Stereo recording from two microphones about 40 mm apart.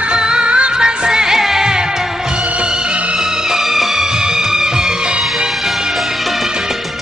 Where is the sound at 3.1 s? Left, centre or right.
Centre.